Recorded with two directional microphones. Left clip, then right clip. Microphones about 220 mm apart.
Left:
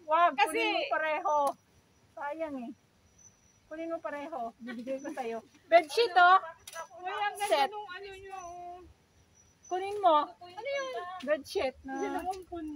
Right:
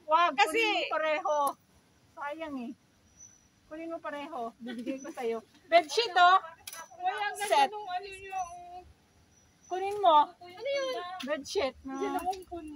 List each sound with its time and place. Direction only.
0.1 s a sound: 10° right (ahead or behind)
0.4 s a woman's voice: 25° right (ahead or behind)
0.9 s a child's voice: 10° right (ahead or behind)
3.7 s a child's voice: 5° right (ahead or behind)
6.6 s a sound: 45° right (ahead or behind)
7.7 s a child's voice: 45° right (ahead or behind)
9.7 s a child's voice: 10° left (ahead or behind)
10.4 s a child's voice: 45° right (ahead or behind)
11.2 s speech: centre (ahead or behind)